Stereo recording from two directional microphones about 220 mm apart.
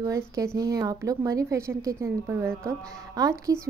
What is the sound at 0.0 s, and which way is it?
Speech, 15° right (ahead or behind).